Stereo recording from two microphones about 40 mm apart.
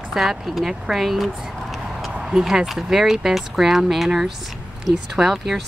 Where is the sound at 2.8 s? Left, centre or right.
Centre.